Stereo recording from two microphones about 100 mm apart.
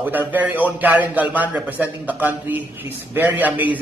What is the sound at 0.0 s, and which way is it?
A man's voice, 20° right (ahead or behind).